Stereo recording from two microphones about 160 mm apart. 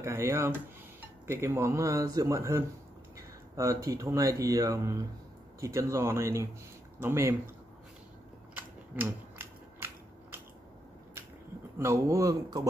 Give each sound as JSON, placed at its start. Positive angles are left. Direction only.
{"t": 0.0, "sound": "speech", "side_deg": -15}
{"t": 3.2, "sound": "a sound", "side_deg": -20}
{"t": 4.0, "sound": "speech", "side_deg": -20}
{"t": 8.5, "sound": "scissors", "side_deg": -15}
{"t": 11.8, "sound": "speech", "side_deg": -20}